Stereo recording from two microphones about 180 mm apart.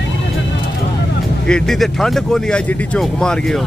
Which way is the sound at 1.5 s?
5° left (ahead or behind).